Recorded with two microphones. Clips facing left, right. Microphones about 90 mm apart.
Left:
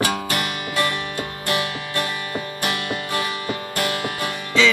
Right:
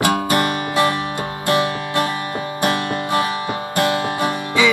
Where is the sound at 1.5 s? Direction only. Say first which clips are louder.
Right 7 dB; 35° right (ahead or behind).